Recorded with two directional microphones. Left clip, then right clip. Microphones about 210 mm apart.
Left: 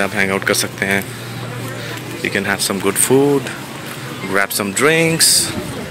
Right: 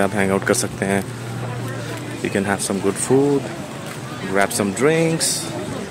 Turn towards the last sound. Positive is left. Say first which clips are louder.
# left 4 dB
turn(degrees=0)  # may be behind; listen again after turning